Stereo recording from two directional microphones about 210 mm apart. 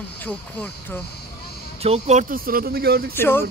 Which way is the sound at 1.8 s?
30° right (ahead or behind).